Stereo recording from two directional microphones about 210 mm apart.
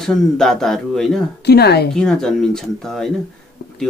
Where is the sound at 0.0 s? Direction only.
Centre (ahead or behind).